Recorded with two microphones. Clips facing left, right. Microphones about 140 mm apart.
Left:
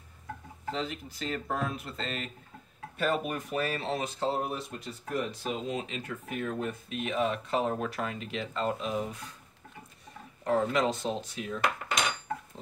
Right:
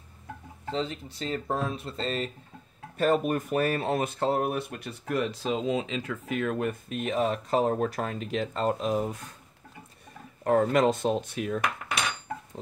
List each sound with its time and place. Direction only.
0.7 s speech: 30° right (ahead or behind)
3.0 s speech: 45° right (ahead or behind); by 6.8 s 70° right (ahead or behind)
6.9 s speech: 45° right (ahead or behind)
10.4 s speech: 50° right (ahead or behind)